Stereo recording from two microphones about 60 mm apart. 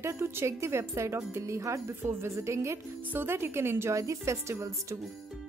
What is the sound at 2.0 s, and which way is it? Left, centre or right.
Speech, right.